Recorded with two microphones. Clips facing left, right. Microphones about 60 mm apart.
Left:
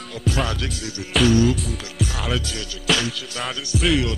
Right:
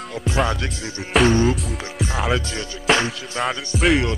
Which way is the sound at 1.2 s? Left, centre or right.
Right.